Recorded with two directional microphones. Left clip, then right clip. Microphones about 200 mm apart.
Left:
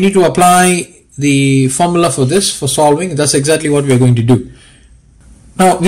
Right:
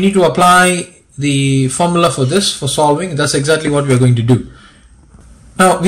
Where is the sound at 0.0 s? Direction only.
25° left (ahead or behind).